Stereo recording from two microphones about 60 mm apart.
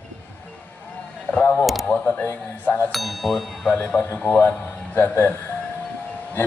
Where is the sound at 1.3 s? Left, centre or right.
Left.